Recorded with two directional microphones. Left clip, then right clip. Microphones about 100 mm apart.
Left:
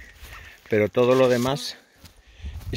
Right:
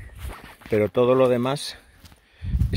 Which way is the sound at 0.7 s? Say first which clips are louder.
Even; 10° right (ahead or behind).